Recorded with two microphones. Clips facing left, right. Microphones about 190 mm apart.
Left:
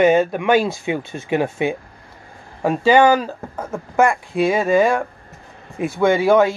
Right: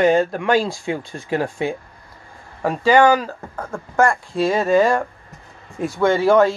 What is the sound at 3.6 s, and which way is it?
Speech, 20° left (ahead or behind).